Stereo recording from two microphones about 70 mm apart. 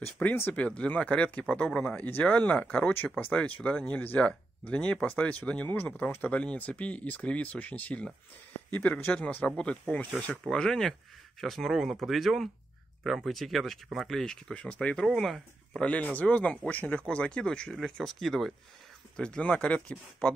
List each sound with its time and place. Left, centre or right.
0.5 s speech: centre
15.1 s speech: centre
15.8 s speech: centre